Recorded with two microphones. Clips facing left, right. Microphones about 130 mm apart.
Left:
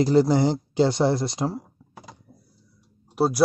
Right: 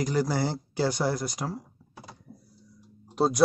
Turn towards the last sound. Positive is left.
turn(degrees=5)  # may be behind; listen again after turning